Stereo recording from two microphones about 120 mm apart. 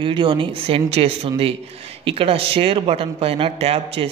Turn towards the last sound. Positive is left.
turn(degrees=-55)  # may be behind; listen again after turning